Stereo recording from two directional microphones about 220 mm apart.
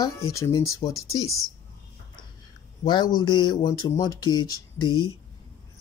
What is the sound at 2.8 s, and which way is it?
Speech, 20° left (ahead or behind).